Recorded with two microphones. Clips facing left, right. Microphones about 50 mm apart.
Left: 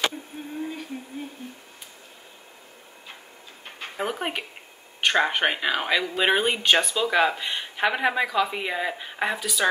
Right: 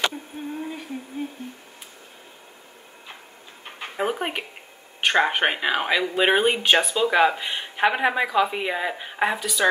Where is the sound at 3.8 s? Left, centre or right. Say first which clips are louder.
Right 3 dB; centre.